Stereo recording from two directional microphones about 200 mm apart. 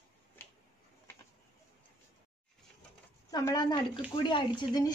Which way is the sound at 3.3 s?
20° left (ahead or behind).